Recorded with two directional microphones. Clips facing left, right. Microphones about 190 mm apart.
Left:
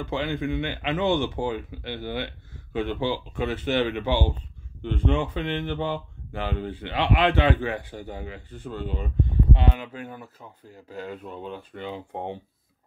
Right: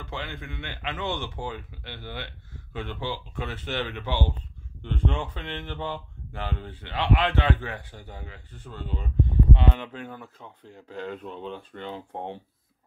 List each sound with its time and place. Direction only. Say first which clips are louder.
0.0 s speech: left 9 dB; 15° left (ahead or behind)